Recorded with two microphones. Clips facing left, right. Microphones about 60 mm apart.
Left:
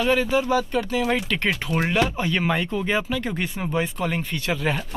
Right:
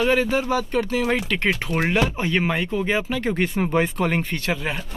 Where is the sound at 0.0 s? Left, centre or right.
Right.